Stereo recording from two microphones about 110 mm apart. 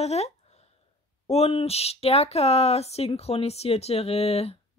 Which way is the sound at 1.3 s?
65° left (ahead or behind).